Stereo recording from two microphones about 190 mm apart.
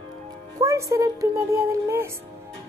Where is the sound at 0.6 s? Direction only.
15° right (ahead or behind).